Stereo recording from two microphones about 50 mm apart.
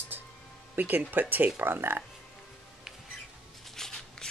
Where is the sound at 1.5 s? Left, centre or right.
Right.